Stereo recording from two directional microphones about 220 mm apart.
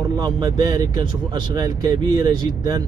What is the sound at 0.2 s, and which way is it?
Speech, 20° right (ahead or behind).